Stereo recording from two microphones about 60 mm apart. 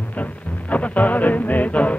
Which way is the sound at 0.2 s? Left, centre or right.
Left.